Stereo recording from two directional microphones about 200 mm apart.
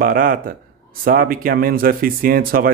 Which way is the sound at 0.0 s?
45° right (ahead or behind).